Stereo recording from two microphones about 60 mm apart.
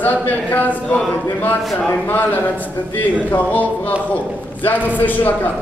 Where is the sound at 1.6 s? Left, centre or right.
Centre.